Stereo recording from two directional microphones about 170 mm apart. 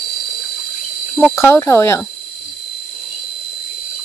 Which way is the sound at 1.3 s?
15° left (ahead or behind).